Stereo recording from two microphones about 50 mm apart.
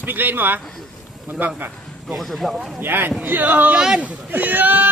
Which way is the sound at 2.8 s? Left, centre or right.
Right.